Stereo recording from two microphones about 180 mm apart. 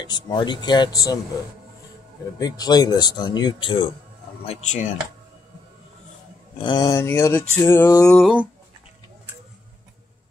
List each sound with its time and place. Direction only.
0.0 s speech: 25° left (ahead or behind)
2.3 s speech: 20° left (ahead or behind)
4.5 s speech: 40° left (ahead or behind)
6.6 s speech: 25° left (ahead or behind)
8.1 s a sound: 5° right (ahead or behind)